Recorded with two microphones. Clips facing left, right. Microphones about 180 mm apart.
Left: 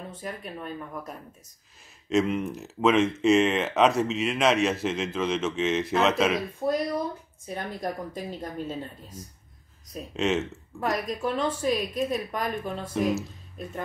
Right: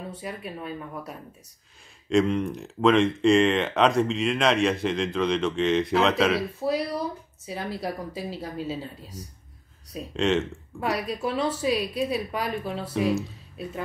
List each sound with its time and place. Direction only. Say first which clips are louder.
0.1 s a woman's voice: right 1 dB; 10° right (ahead or behind)
2.0 s speech: right 2 dB; 5° left (ahead or behind)
10.1 s speech: right 2 dB; 5° left (ahead or behind)
11.0 s a woman's voice: right 1 dB; 10° right (ahead or behind)